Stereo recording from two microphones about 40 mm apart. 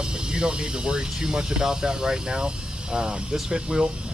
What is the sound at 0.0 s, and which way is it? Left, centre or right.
Speech, right.